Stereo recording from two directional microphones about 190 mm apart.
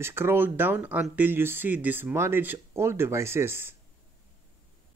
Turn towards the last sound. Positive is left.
turn(degrees=-10)  # may be behind; listen again after turning